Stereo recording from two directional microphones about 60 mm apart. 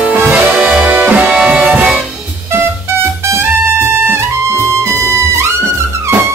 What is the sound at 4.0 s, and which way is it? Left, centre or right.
Trumpet, right.